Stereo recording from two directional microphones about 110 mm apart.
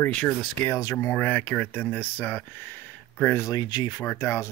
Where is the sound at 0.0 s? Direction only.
10° left (ahead or behind).